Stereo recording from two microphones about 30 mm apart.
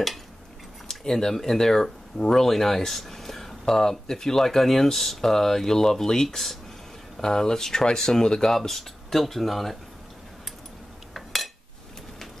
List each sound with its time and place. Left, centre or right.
0.8 s speech: centre
3.1 s a sound: centre
4.1 s speech: centre
6.2 s speech: centre; by 8.5 s left
8.5 s speech: centre
11.1 s cutlery: centre